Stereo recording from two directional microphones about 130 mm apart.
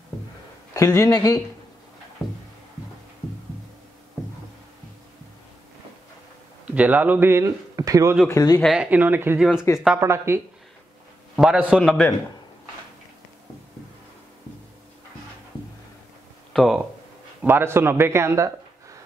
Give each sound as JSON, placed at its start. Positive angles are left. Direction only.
{"t": 0.7, "sound": "speech", "side_deg": 25}
{"t": 2.2, "sound": "music", "side_deg": 0}
{"t": 6.7, "sound": "speech", "side_deg": -10}
{"t": 8.3, "sound": "speech", "side_deg": 25}
{"t": 8.7, "sound": "speech", "side_deg": -10}
{"t": 9.4, "sound": "a man's voice", "side_deg": -5}
{"t": 9.9, "sound": "a man's voice", "side_deg": -20}
{"t": 11.3, "sound": "a man's voice", "side_deg": -5}
{"t": 16.5, "sound": "speech", "side_deg": 0}
{"t": 17.4, "sound": "a man's voice", "side_deg": -15}